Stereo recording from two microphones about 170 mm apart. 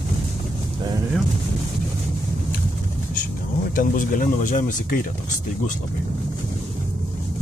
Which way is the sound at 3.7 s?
50° left (ahead or behind).